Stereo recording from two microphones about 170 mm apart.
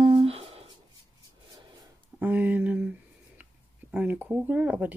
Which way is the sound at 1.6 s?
25° right (ahead or behind).